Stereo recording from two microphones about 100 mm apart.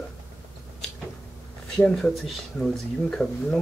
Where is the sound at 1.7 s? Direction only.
10° left (ahead or behind).